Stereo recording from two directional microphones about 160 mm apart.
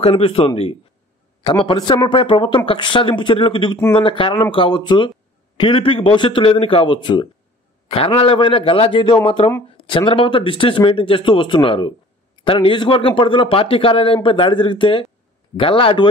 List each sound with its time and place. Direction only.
0.0 s speech: 35° left (ahead or behind)